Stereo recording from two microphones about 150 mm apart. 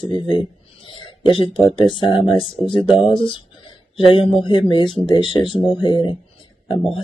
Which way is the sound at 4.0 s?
35° left (ahead or behind).